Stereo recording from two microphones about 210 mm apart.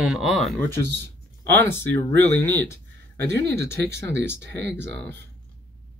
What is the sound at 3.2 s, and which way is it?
Speech, 55° right (ahead or behind).